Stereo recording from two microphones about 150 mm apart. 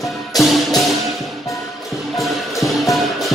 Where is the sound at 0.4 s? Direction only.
Centre (ahead or behind).